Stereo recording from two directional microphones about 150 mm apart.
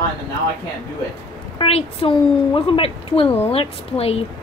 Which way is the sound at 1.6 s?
40° left (ahead or behind).